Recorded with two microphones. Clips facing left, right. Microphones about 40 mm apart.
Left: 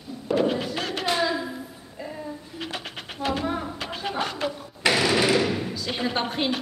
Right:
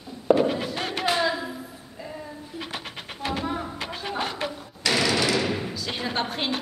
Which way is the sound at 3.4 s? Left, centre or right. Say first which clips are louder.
Left 1 dB; centre.